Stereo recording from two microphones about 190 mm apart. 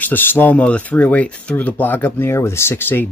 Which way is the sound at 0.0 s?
10° left (ahead or behind).